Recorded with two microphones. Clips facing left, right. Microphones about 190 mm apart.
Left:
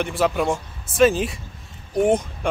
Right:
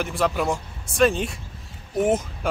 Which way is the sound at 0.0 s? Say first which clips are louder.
Left 2 dB; centre (ahead or behind).